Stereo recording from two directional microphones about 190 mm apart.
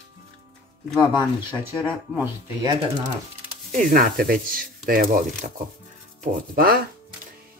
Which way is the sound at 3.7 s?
45° right (ahead or behind).